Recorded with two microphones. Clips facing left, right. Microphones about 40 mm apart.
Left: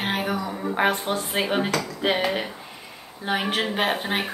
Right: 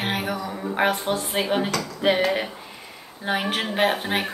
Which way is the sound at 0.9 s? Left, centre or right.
Left.